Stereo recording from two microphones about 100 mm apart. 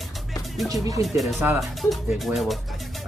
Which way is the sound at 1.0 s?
35° right (ahead or behind).